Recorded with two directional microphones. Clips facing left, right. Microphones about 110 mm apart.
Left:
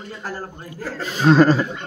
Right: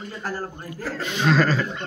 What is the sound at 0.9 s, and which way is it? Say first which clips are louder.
Speech: left 6 dB; 35° left (ahead or behind).